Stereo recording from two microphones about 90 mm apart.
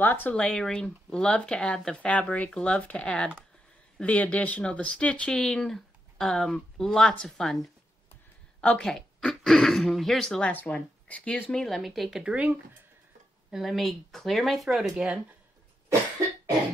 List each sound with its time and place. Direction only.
0.0 s speech: 20° left (ahead or behind)
11.5 s speech: centre (ahead or behind)
12.2 s speech: 15° right (ahead or behind)
13.5 s speech: 5° right (ahead or behind)